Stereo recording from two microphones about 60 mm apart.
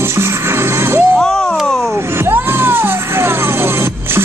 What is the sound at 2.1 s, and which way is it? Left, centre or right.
Music, right.